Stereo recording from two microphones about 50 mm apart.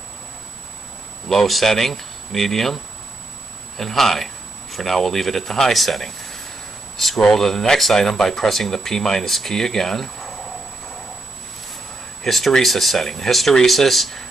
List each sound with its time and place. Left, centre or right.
1.3 s speech: centre
12.2 s speech: centre